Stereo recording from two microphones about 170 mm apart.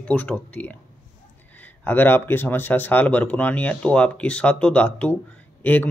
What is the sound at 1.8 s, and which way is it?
Speech, 10° left (ahead or behind).